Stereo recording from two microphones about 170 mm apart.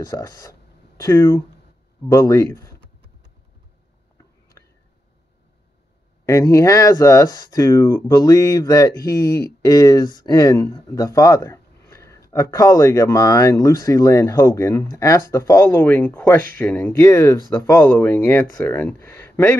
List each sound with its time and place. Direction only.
0.0 s speech: 20° left (ahead or behind)
6.2 s speech: 20° left (ahead or behind)